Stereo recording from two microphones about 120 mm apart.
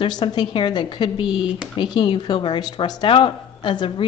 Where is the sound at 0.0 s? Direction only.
40° left (ahead or behind).